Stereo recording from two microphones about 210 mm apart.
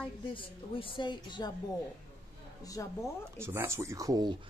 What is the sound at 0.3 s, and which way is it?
A woman's voice, 25° left (ahead or behind).